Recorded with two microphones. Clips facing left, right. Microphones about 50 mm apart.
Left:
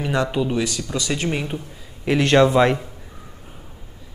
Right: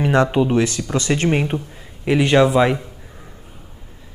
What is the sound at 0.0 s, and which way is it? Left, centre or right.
Speech, right.